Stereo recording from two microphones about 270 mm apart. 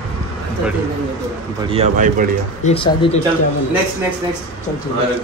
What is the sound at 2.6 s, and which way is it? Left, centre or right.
Speech, left.